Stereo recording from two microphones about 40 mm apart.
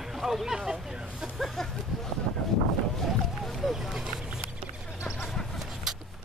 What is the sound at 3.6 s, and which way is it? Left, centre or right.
Speech, centre.